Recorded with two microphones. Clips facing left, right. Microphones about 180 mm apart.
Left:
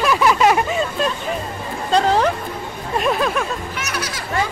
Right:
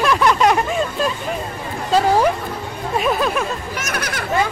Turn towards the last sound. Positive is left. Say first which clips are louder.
# right 2 dB
turn(degrees=-55)  # may be behind; listen again after turning